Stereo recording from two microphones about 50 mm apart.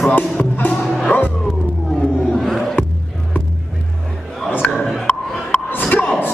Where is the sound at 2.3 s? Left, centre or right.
Centre.